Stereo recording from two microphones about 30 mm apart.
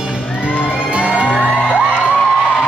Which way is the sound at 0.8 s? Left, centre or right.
Right.